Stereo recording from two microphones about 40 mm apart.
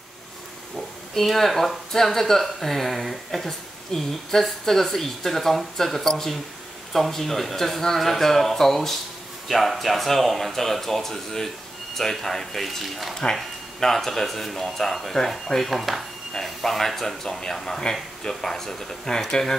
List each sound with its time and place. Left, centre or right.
1.1 s speech: centre
13.1 s speech: centre
15.6 s speech: centre